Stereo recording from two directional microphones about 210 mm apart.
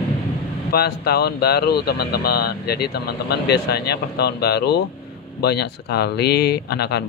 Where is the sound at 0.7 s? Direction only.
45° left (ahead or behind).